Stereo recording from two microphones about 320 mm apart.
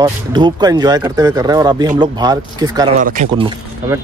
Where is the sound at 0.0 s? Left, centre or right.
Centre.